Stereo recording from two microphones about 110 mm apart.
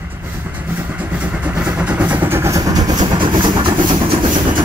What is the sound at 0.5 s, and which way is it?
Vehicle, 15° right (ahead or behind).